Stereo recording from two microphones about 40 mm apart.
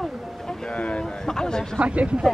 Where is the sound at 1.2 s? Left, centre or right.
Centre.